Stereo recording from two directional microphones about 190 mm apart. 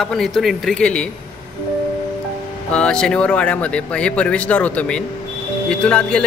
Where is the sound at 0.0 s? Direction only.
Centre (ahead or behind).